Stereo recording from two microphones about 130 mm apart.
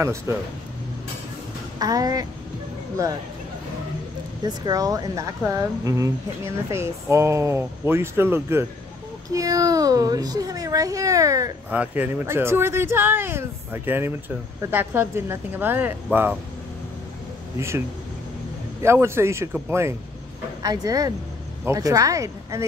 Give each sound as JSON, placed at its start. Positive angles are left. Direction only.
{"t": 0.3, "sound": "speech", "side_deg": -20}
{"t": 1.8, "sound": "speech", "side_deg": -25}
{"t": 4.5, "sound": "speech", "side_deg": -30}
{"t": 11.7, "sound": "speech", "side_deg": -15}
{"t": 17.6, "sound": "speech", "side_deg": -20}